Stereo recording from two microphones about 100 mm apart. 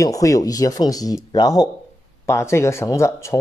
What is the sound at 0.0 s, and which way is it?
A man's voice, 35° left (ahead or behind).